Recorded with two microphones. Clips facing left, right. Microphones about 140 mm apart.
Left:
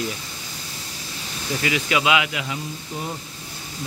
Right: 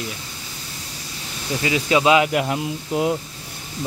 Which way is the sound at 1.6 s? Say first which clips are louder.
Right 5 dB; 30° right (ahead or behind).